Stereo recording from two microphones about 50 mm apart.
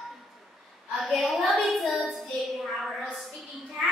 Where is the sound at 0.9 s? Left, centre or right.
Centre.